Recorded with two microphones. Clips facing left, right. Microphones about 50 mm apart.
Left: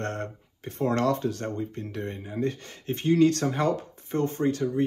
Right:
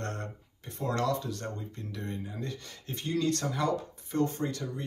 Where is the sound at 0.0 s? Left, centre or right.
Left.